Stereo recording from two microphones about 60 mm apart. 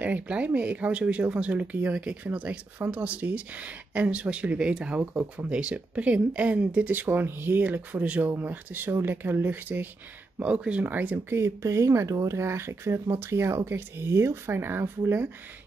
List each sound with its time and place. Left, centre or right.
0.0 s speech: right
7.1 s speech: right
8.3 s speech: right
10.4 s speech: centre
11.2 s speech: right